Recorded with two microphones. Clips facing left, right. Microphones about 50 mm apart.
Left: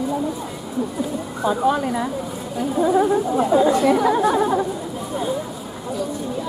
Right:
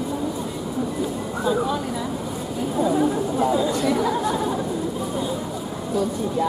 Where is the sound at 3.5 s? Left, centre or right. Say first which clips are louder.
Left 5 dB; left.